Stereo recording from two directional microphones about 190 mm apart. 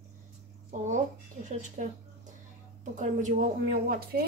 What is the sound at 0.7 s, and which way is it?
A woman's voice, 40° right (ahead or behind).